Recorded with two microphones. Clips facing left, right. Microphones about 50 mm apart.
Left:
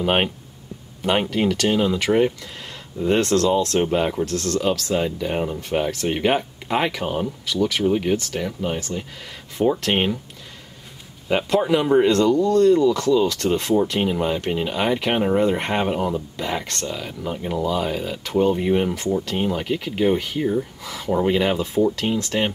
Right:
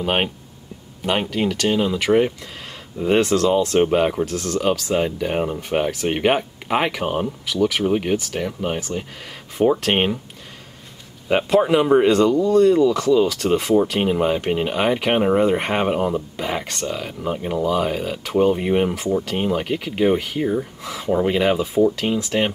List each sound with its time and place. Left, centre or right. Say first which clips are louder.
0.0 s speech: left 1 dB; centre
1.3 s speech: even; centre
3.0 s speech: right 1 dB; centre
11.2 s speech: right 3 dB; centre